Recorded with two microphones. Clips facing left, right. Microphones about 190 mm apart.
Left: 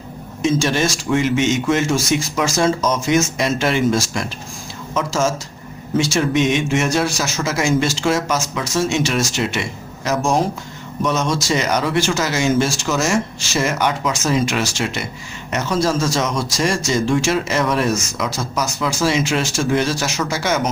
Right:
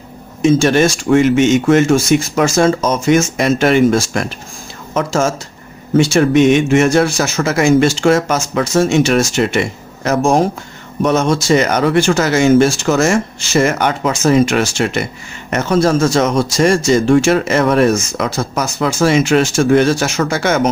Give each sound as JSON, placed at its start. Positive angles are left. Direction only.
{"t": 0.4, "sound": "speech", "side_deg": -55}